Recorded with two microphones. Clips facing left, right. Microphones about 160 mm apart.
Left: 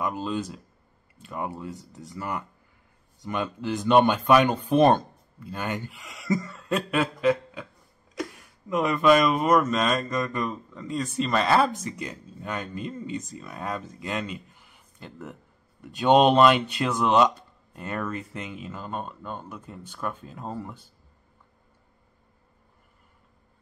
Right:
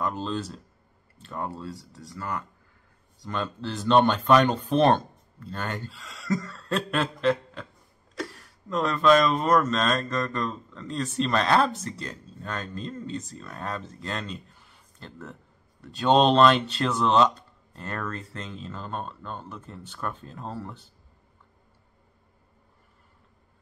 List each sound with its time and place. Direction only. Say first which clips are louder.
0.0 s speech: left 1 dB; 10° left (ahead or behind)